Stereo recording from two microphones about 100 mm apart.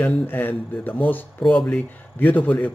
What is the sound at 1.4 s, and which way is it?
A man's voice, 5° left (ahead or behind).